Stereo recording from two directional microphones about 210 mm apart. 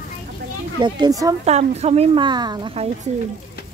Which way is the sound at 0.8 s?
20° right (ahead or behind).